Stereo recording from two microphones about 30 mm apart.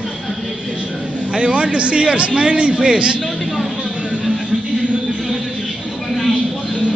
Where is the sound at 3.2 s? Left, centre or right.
Centre.